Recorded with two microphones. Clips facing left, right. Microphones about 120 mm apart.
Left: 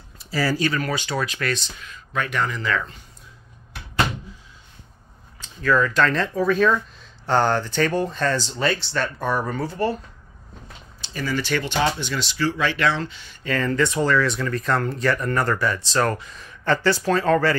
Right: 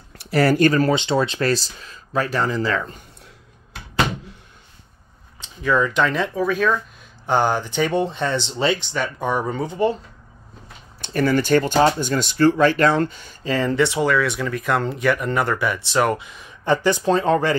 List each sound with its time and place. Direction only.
0.2 s speech: 65° right (ahead or behind)
0.7 s speech: 35° right (ahead or behind)
0.9 s speech: 25° right (ahead or behind)
5.4 s speech: 20° right (ahead or behind)
11.0 s speech: 55° right (ahead or behind)
13.4 s speech: 25° right (ahead or behind)